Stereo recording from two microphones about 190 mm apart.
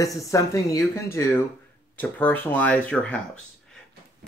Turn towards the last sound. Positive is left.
turn(degrees=5)  # may be behind; listen again after turning